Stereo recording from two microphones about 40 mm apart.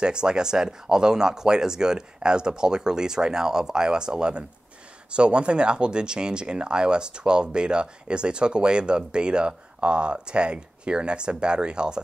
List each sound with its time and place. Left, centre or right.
0.0 s speech: right